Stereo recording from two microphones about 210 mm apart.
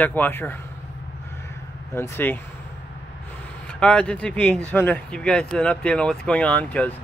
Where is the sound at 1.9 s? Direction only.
10° left (ahead or behind).